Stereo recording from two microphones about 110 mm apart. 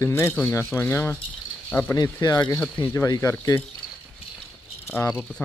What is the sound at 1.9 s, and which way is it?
Speech, 35° left (ahead or behind).